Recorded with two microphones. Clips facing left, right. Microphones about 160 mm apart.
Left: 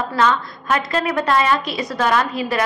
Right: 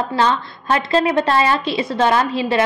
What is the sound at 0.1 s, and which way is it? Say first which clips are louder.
A woman's voice: left 3 dB; 30° right (ahead or behind).